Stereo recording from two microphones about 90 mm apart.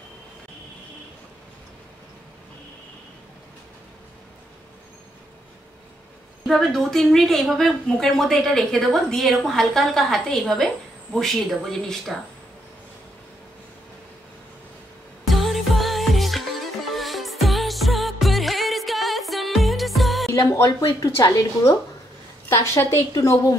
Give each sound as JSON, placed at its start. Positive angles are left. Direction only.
{"t": 6.4, "sound": "a woman's voice", "side_deg": 0}
{"t": 15.2, "sound": "music", "side_deg": 0}
{"t": 20.2, "sound": "speech", "side_deg": 30}
{"t": 21.0, "sound": "a woman's voice", "side_deg": 45}
{"t": 22.5, "sound": "a woman's voice", "side_deg": 30}